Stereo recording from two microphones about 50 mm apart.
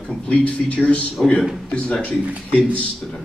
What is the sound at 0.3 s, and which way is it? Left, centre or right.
A man's voice, left.